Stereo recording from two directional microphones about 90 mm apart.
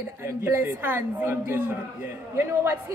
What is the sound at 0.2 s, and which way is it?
A woman's voice, 25° right (ahead or behind).